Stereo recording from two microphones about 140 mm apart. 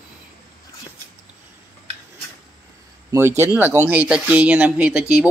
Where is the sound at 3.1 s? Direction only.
20° right (ahead or behind).